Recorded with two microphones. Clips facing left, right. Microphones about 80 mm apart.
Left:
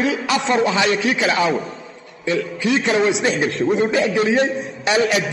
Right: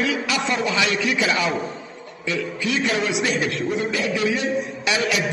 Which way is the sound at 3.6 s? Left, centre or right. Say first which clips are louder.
Left 6 dB; left.